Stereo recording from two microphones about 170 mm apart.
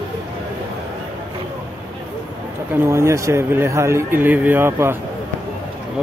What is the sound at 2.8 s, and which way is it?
Speech, 15° right (ahead or behind).